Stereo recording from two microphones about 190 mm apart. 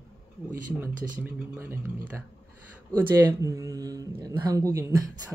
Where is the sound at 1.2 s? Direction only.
10° right (ahead or behind).